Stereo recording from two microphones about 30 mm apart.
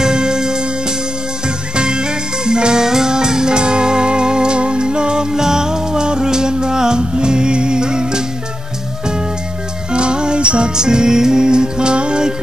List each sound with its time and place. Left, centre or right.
0.0 s music: right
9.9 s music: right
10.8 s music: right